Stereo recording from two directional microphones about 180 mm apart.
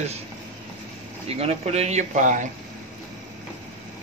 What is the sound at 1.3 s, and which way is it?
Speech, 35° right (ahead or behind).